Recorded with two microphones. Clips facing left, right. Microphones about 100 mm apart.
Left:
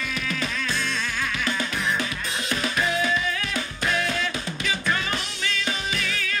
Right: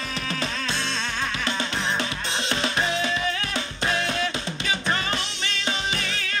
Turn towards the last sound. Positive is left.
turn(degrees=-35)  # may be behind; listen again after turning